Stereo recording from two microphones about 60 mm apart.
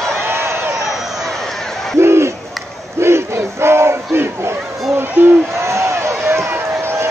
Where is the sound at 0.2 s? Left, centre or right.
Right.